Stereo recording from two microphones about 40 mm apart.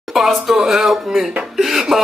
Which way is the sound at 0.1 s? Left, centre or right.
Centre.